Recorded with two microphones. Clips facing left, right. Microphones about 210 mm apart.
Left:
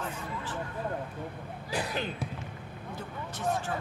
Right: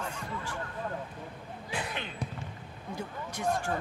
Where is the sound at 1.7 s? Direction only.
40° left (ahead or behind).